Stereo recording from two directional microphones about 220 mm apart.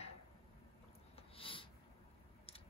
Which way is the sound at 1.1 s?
25° left (ahead or behind).